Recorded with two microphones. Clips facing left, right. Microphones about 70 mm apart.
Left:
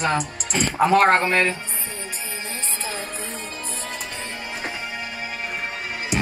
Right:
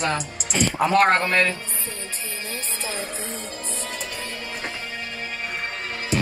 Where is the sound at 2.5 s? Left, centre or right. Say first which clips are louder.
Right 1 dB; left; by 6.0 s centre.